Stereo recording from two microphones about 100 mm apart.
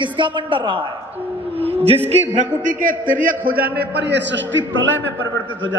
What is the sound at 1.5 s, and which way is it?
Speech, 80° right.